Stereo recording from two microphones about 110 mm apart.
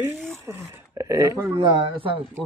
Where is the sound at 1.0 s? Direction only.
30° right (ahead or behind).